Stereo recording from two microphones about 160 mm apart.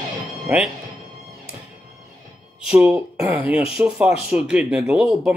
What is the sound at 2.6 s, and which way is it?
Speech, 10° right (ahead or behind).